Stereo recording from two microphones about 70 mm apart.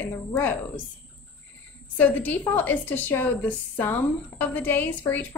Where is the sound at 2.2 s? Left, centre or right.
Left.